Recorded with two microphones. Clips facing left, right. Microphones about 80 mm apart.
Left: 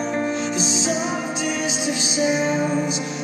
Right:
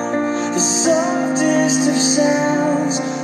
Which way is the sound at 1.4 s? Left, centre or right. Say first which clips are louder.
Right 9 dB; right.